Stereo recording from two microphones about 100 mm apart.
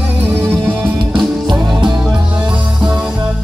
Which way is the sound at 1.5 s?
50° right (ahead or behind).